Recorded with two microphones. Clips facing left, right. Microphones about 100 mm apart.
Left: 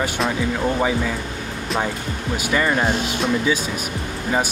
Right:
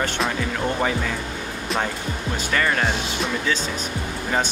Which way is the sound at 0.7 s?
10° left (ahead or behind).